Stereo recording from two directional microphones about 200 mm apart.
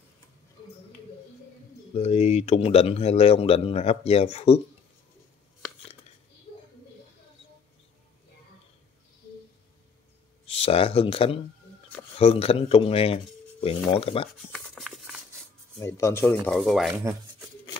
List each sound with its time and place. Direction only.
2.0 s speech: 30° left (ahead or behind)
10.5 s speech: 30° left (ahead or behind)
14.5 s a sound: centre (ahead or behind)
15.8 s speech: 15° left (ahead or behind)